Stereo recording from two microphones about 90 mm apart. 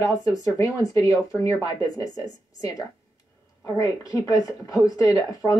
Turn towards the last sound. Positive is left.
turn(degrees=40)  # may be behind; listen again after turning